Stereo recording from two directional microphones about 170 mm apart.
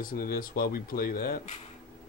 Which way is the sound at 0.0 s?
60° left (ahead or behind).